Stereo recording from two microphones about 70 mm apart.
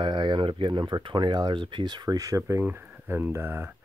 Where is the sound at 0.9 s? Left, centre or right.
Right.